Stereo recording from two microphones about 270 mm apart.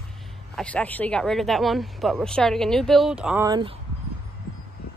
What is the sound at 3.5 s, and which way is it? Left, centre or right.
Speech, centre.